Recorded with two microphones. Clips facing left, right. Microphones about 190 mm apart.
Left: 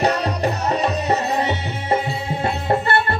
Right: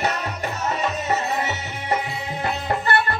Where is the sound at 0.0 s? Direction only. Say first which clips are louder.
Left 6 dB; 35° left (ahead or behind).